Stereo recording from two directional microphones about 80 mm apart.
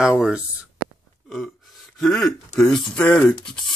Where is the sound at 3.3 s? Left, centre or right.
Centre.